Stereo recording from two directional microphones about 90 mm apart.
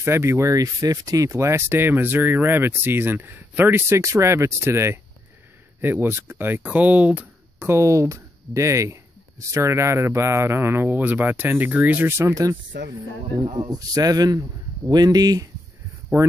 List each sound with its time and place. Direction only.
0.0 s speech: 30° right (ahead or behind)
7.5 s speech: 30° right (ahead or behind); by 15.4 s 45° right (ahead or behind)
16.1 s speech: 30° right (ahead or behind)